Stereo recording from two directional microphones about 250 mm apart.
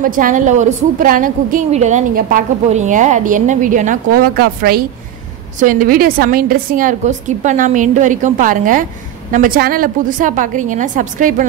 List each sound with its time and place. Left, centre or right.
0.0 s a woman's voice: right